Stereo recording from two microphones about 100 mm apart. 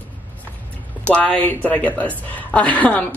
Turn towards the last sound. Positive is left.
turn(degrees=15)  # may be behind; listen again after turning